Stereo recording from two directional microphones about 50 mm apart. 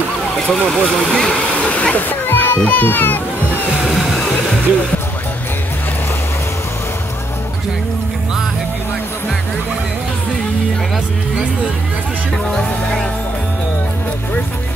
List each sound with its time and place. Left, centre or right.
0.5 s speech: centre
1.7 s waterfall: left
2.0 s splash: left
2.7 s a child's voice: left
3.8 s music: centre
12.4 s speech: centre